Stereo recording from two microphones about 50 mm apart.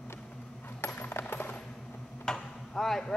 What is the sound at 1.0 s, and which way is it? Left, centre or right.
Coin, left.